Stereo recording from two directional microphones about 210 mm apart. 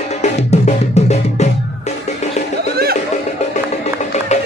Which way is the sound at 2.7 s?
45° right (ahead or behind).